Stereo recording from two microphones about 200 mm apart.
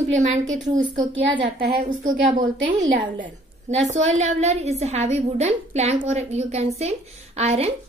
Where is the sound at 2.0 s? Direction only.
40° right (ahead or behind).